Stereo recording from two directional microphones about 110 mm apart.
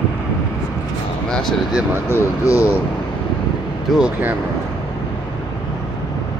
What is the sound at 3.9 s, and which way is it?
Speech, centre (ahead or behind).